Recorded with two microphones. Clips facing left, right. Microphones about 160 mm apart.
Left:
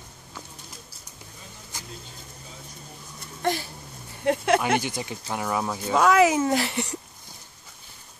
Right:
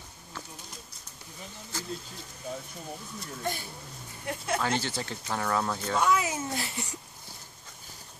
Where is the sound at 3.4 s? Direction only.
90° left.